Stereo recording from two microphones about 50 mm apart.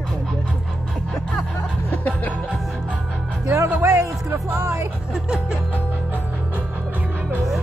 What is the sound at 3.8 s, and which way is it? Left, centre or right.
Music, right.